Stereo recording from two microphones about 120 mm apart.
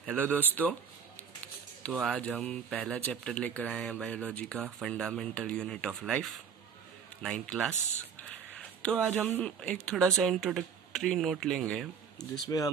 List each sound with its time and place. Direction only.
0.0 s speech: 10° left (ahead or behind)
2.0 s speech: 5° left (ahead or behind)
8.3 s a sound: 5° left (ahead or behind)
9.4 s speech: 5° left (ahead or behind)
12.2 s speech: 30° left (ahead or behind)